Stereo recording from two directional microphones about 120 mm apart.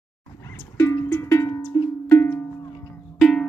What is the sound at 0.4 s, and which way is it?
Music, 20° left (ahead or behind).